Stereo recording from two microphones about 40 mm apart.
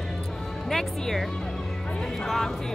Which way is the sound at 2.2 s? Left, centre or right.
Centre.